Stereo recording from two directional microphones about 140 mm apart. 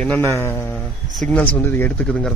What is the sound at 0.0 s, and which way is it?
Speech, 15° left (ahead or behind).